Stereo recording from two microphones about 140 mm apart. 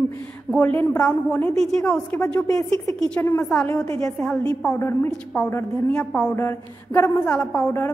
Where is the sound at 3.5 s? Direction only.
5° left (ahead or behind).